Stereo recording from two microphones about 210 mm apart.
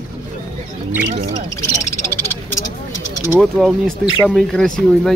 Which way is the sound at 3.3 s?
Centre (ahead or behind).